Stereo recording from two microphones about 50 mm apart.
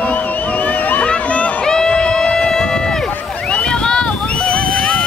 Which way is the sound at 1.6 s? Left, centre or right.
Centre.